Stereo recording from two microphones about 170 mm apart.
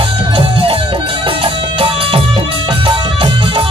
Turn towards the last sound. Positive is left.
turn(degrees=-30)  # may be behind; listen again after turning